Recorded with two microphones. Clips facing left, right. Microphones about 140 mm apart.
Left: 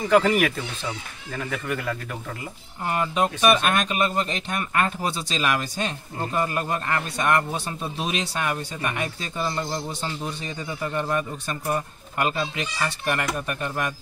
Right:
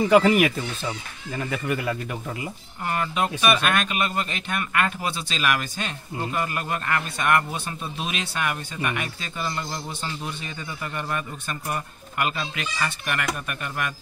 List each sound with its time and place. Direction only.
0.0 s speech: 5° right (ahead or behind)
2.8 s speech: 25° left (ahead or behind)